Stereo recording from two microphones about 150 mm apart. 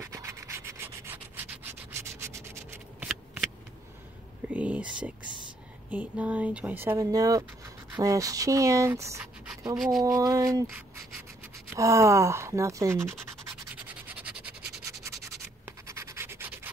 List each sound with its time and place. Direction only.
0.0 s rub: 20° right (ahead or behind)
4.5 s a sound: 10° right (ahead or behind)
5.9 s speech: 10° right (ahead or behind)
11.7 s speech: 20° right (ahead or behind)
13.8 s scratch: 10° right (ahead or behind)
14.9 s rub: 20° right (ahead or behind)